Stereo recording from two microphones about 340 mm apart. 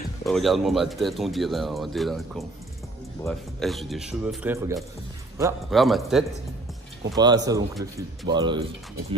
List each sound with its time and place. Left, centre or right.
0.2 s speech: centre
7.2 s speech: centre
7.7 s speech: centre
8.3 s speech: centre